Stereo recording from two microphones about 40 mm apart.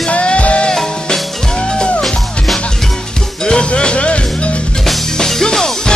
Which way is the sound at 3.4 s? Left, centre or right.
Left.